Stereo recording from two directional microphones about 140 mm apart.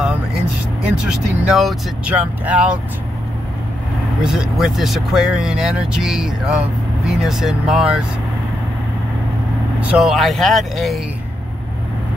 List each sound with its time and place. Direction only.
1.0 s speech: centre (ahead or behind)
4.2 s speech: 5° right (ahead or behind)
9.8 s speech: 5° right (ahead or behind)